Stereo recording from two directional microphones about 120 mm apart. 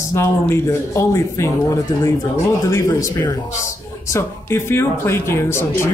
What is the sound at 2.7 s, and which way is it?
Speech, 25° left (ahead or behind).